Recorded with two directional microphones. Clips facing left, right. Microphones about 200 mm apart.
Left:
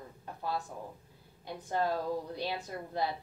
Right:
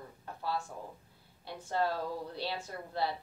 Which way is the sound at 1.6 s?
15° left (ahead or behind).